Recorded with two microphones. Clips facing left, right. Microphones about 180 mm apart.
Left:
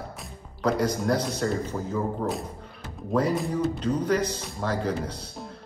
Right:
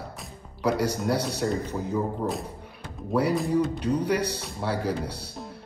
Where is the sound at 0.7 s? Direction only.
70° right (ahead or behind).